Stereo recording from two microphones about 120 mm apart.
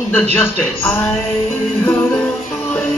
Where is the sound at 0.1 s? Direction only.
15° left (ahead or behind).